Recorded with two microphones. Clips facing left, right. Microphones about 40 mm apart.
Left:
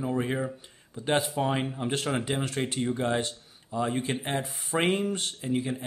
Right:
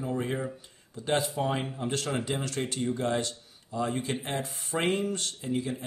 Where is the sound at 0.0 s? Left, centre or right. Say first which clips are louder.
Left 2 dB; centre.